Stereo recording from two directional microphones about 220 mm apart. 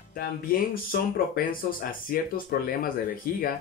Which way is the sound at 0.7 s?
40° left (ahead or behind).